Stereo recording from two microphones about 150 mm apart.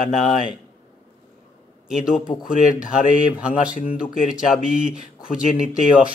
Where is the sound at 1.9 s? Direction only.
5° right (ahead or behind).